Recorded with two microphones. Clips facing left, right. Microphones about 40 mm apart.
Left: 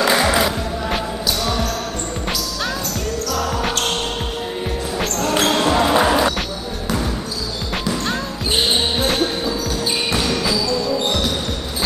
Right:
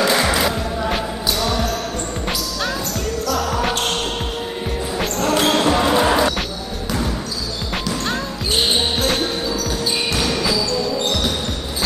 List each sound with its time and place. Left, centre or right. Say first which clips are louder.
0.0 s music: left 1 dB; centre
3.3 s basketball bounce: right 2 dB; centre
4.9 s basketball bounce: right 1 dB; centre
8.7 s basketball bounce: left 1 dB; centre
10.2 s music: even; centre
10.7 s music: left 1 dB; centre